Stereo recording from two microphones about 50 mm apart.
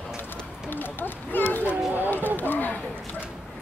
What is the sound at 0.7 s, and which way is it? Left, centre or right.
Run, left.